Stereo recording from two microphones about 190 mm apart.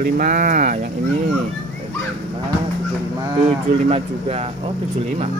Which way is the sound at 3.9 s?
35° right (ahead or behind).